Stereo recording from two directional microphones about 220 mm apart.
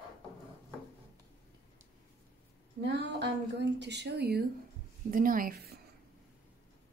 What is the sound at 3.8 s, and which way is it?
A woman's voice, 50° right (ahead or behind).